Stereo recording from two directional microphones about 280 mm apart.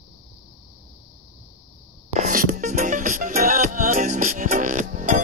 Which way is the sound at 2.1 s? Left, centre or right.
Right.